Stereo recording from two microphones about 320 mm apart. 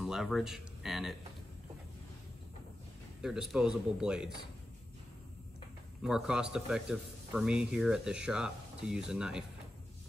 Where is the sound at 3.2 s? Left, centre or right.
Centre.